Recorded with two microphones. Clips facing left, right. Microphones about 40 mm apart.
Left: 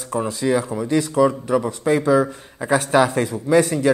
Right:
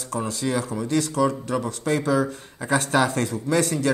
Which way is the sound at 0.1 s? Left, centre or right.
Centre.